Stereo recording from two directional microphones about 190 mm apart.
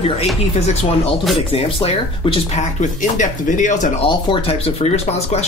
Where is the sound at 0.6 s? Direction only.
35° left (ahead or behind).